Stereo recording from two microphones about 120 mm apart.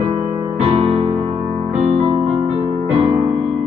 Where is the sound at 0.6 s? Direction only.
55° right (ahead or behind).